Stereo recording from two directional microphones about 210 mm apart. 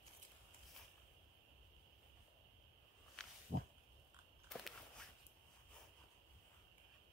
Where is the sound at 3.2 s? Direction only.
5° left (ahead or behind).